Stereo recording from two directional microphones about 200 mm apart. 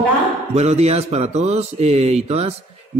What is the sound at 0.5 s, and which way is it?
A man's voice, 30° right (ahead or behind).